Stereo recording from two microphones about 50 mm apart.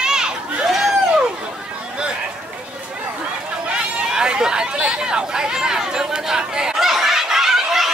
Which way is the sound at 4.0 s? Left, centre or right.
Centre.